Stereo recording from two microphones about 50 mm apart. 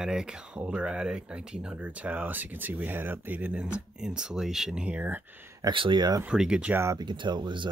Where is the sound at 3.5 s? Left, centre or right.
Right.